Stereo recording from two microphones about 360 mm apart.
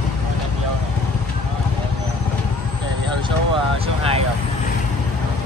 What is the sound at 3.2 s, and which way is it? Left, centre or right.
Vehicle, centre.